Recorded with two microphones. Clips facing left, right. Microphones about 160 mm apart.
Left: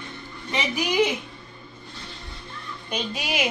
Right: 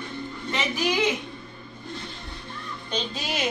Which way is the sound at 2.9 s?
10° left (ahead or behind).